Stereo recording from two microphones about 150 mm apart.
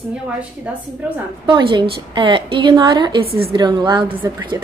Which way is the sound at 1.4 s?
30° right (ahead or behind).